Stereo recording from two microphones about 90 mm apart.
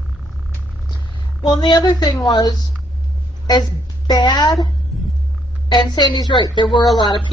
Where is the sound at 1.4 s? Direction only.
55° left (ahead or behind).